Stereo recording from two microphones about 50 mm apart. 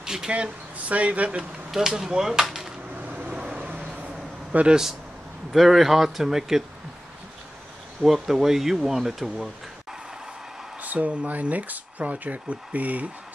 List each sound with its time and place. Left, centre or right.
0.0 s speech: centre
1.7 s speech: centre
3.0 s vehicle: right
3.3 s vehicle: right
4.5 s speech: right
5.5 s speech: centre
8.0 s speech: centre
10.8 s speech: right